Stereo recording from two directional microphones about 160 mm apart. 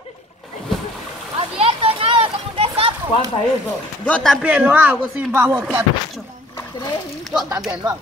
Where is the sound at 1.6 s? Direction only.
35° right (ahead or behind).